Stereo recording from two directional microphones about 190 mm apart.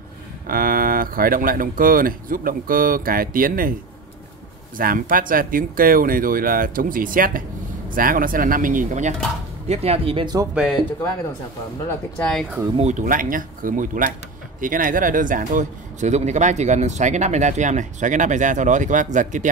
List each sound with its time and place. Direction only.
0.5 s speech: 50° right (ahead or behind)
4.7 s speech: 45° right (ahead or behind); by 10.5 s 20° right (ahead or behind)
10.5 s speech: 5° right (ahead or behind)
12.2 s speech: 5° left (ahead or behind)
12.7 s speech: 35° right (ahead or behind)